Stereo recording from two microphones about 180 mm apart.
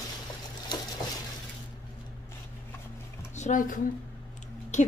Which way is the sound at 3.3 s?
45° left (ahead or behind).